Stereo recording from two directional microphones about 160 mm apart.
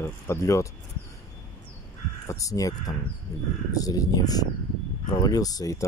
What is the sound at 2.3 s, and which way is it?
Crow, 20° left (ahead or behind).